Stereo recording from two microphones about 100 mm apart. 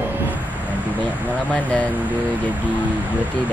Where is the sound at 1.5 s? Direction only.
15° left (ahead or behind).